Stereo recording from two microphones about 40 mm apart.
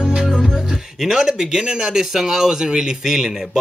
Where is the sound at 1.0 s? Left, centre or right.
Centre.